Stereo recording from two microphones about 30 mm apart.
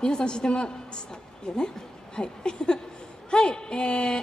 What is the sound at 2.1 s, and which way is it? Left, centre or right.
A woman's voice, left.